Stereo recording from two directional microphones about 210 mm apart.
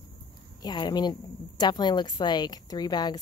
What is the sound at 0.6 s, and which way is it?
Speech, 20° left (ahead or behind).